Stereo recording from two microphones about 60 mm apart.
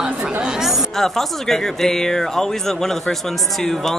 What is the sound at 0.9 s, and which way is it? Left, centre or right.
Speech, centre.